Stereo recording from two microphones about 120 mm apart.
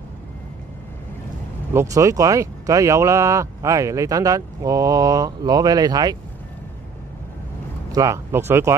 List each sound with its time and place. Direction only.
1.7 s speech: 25° right (ahead or behind)
7.9 s speech: 25° right (ahead or behind)